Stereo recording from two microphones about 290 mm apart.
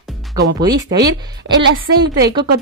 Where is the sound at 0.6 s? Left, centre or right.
Centre.